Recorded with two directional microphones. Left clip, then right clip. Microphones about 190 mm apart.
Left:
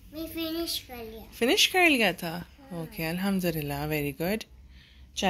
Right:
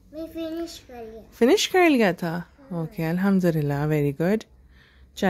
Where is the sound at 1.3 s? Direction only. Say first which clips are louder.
Right 4 dB; 65° right (ahead or behind).